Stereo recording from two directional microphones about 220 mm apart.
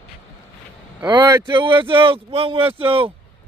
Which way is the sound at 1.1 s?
10° right (ahead or behind).